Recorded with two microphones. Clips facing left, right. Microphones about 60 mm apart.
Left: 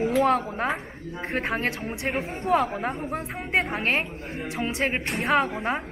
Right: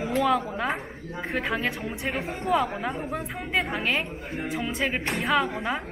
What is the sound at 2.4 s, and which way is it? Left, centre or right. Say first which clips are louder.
Speech: left 2 dB; left.